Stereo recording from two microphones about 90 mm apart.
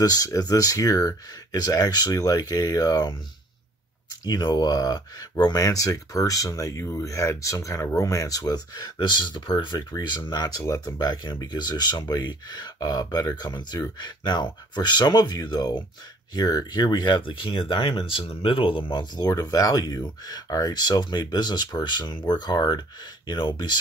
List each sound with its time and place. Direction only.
0.0 s speech: 45° left (ahead or behind)
4.2 s speech: 50° left (ahead or behind)
10.6 s speech: 35° left (ahead or behind); by 17.2 s 55° left (ahead or behind)
17.2 s speech: 75° left (ahead or behind); by 23.8 s 55° left (ahead or behind)